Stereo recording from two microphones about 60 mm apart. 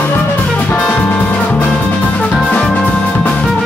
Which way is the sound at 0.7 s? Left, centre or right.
Left.